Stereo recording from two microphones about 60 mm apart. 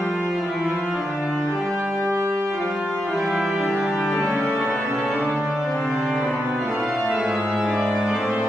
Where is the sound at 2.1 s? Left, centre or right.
Right.